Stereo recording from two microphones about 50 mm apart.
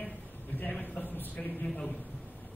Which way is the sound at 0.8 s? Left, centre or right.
Left.